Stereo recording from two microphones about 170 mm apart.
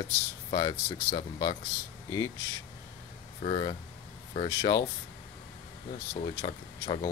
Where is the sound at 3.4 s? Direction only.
35° left (ahead or behind).